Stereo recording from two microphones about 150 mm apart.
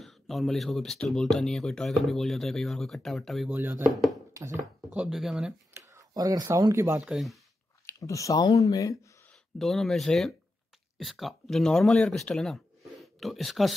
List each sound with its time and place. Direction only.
0.0 s speech: centre (ahead or behind)
3.5 s speech: 15° right (ahead or behind)
3.9 s speech: centre (ahead or behind)
4.3 s a sound: 20° right (ahead or behind)
4.9 s speech: 5° right (ahead or behind)
5.7 s speech: 20° right (ahead or behind)
7.0 s speech: 5° right (ahead or behind)
7.8 s speech: 20° left (ahead or behind)
9.3 s speech: centre (ahead or behind)